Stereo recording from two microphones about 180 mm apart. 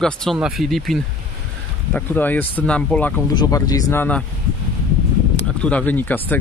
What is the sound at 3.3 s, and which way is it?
Speech, 20° left (ahead or behind).